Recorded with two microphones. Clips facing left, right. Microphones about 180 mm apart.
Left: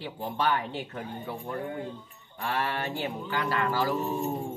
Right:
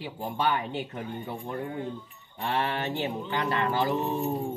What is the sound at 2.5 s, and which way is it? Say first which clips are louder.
Speech: right 2 dB; 20° right (ahead or behind).